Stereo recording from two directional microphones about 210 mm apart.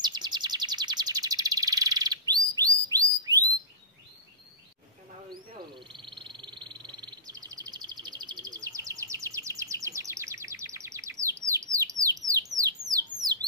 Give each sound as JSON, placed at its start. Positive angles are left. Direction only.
{"t": 0.0, "sound": "chirp", "side_deg": -20}
{"t": 5.9, "sound": "bird", "side_deg": -20}
{"t": 13.2, "sound": "a sound", "side_deg": -20}